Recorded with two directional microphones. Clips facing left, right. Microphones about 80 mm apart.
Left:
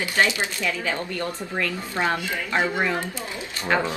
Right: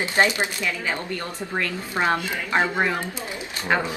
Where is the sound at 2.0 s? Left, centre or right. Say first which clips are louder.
Right 2 dB; right.